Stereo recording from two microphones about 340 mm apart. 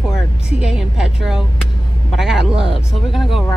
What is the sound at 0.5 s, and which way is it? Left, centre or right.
A woman's voice, centre.